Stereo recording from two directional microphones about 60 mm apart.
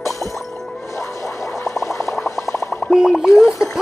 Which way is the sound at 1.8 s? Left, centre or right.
Left.